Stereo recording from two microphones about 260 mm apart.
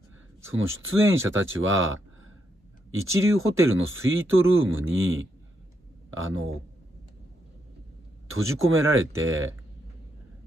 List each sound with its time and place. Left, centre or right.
0.5 s speech: right
3.3 s speech: right
8.3 s speech: right